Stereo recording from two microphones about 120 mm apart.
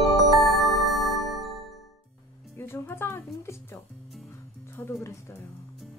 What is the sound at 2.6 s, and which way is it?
Music, 20° left (ahead or behind).